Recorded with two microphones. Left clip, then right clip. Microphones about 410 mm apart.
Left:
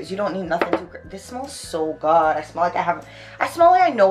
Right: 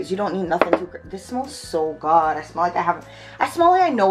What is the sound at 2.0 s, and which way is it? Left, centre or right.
Speech, left.